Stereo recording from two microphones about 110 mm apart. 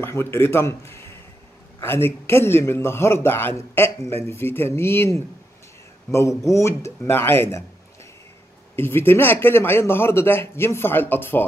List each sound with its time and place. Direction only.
0.0 s a man's voice: 20° left (ahead or behind)